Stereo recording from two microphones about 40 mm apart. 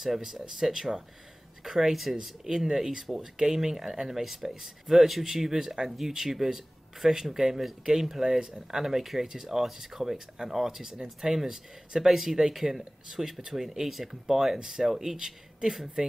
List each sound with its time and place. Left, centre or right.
0.0 s speech: centre